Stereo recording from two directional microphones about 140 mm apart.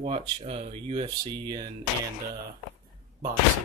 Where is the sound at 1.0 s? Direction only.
30° right (ahead or behind).